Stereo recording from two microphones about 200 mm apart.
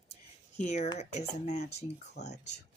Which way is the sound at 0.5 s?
35° left (ahead or behind).